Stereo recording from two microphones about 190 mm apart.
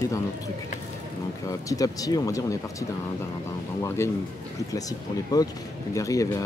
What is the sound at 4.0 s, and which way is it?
Speech, 15° left (ahead or behind).